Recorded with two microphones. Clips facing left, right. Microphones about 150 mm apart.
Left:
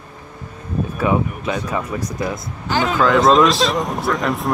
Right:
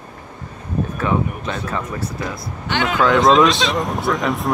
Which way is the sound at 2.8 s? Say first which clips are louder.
Even; centre (ahead or behind).